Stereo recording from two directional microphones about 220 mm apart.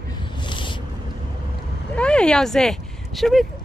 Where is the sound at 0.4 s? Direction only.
20° left (ahead or behind).